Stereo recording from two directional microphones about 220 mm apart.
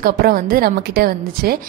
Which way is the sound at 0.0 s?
40° right (ahead or behind).